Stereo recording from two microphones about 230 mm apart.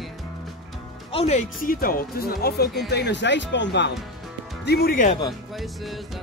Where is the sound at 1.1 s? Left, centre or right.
Left.